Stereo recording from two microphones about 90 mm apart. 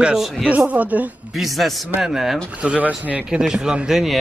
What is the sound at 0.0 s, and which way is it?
Speech, 5° right (ahead or behind).